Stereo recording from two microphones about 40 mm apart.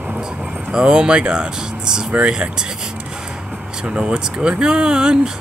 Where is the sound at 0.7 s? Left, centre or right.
Right.